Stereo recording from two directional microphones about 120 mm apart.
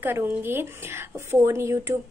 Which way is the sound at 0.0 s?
20° right (ahead or behind).